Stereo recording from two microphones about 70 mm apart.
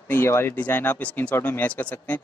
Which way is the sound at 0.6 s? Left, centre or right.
Left.